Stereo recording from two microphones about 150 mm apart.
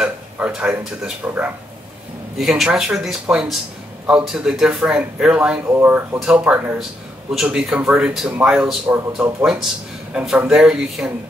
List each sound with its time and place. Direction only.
0.0 s a man's voice: 5° right (ahead or behind)